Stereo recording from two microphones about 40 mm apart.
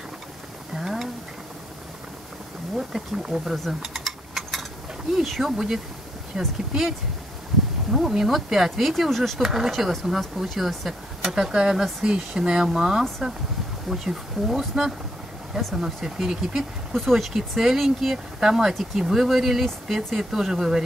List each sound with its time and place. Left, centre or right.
0.7 s a sound: centre
2.9 s speech: centre
3.8 s a sound: centre
5.1 s speech: centre
6.3 s speech: centre
7.9 s speech: centre
9.4 s speech: centre
11.2 s speech: centre
16.9 s speech: centre